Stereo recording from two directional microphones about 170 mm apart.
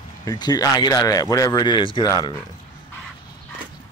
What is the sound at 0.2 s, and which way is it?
Speech, 20° left (ahead or behind).